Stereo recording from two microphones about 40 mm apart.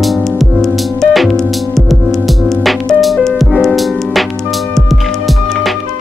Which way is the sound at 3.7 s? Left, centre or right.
Centre.